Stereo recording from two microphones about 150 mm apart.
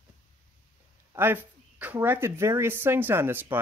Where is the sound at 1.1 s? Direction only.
15° right (ahead or behind).